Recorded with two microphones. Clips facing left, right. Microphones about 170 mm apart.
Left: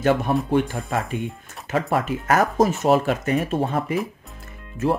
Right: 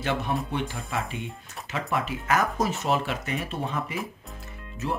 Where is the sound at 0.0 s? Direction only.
45° left (ahead or behind).